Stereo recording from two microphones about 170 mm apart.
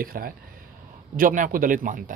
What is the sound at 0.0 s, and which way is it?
Speech, 60° right (ahead or behind).